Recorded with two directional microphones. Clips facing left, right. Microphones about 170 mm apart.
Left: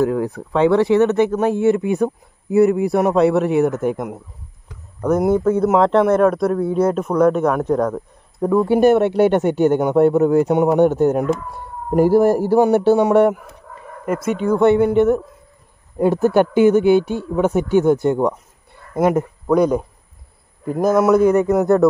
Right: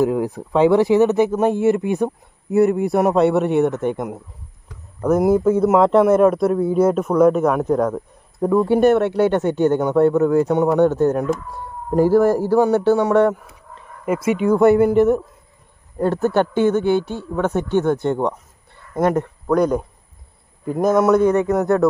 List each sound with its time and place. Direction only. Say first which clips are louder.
0.0 s a man's voice: even; 15° right (ahead or behind); by 13.4 s 15° left (ahead or behind)
14.0 s a man's voice: right 1 dB; 5° right (ahead or behind)
16.0 s a man's voice: left 3 dB; 10° left (ahead or behind)